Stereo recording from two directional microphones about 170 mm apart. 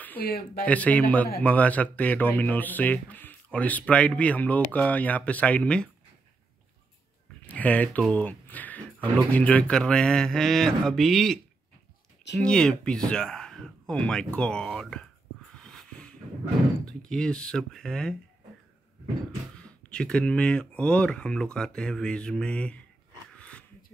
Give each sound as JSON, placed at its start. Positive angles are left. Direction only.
{"t": 0.2, "sound": "speech", "side_deg": 60}
{"t": 0.7, "sound": "speech", "side_deg": 10}
{"t": 7.4, "sound": "speech", "side_deg": 10}
{"t": 12.4, "sound": "a sound", "side_deg": 5}
{"t": 16.8, "sound": "speech", "side_deg": 5}
{"t": 19.6, "sound": "speech", "side_deg": 5}
{"t": 23.3, "sound": "a sound", "side_deg": 5}